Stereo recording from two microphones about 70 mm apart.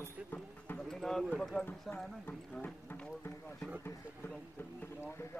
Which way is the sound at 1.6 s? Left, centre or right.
Left.